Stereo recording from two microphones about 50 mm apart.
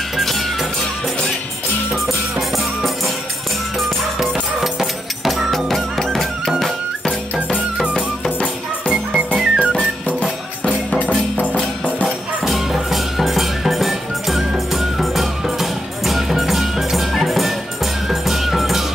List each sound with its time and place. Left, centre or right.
4.2 s music: centre
7.3 s music: right
8.9 s music: right
10.6 s music: left
12.4 s music: centre